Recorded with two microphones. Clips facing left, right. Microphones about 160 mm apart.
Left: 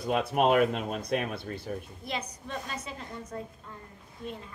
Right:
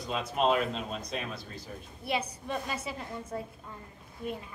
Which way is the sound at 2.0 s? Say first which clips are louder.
Right 3 dB; 10° right (ahead or behind).